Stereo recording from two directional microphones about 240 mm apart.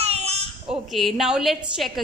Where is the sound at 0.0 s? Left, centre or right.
Right.